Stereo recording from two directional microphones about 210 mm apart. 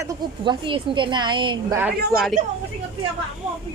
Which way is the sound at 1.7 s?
5° right (ahead or behind).